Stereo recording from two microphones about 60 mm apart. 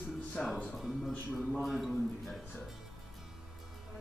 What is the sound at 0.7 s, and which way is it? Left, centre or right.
A man's voice, centre.